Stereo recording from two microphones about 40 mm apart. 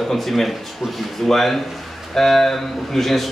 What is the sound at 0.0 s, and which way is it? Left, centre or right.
Speech, centre.